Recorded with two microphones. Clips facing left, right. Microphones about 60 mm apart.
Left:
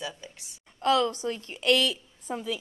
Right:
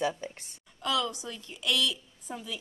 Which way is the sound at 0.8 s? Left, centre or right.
Left.